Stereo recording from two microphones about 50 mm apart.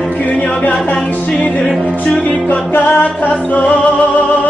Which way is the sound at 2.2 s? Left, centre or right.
Left.